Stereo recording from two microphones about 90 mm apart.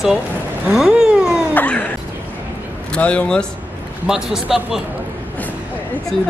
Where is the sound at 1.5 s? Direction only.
15° left (ahead or behind).